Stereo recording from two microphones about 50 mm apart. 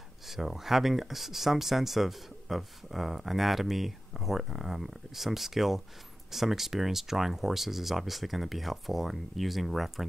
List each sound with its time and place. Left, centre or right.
0.3 s speech: centre